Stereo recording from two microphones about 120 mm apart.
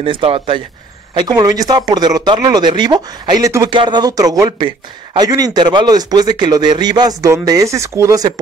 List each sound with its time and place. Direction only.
0.0 s speech: 50° right (ahead or behind)
1.1 s speech: 35° right (ahead or behind)